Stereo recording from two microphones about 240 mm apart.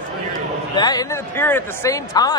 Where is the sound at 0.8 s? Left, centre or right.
Centre.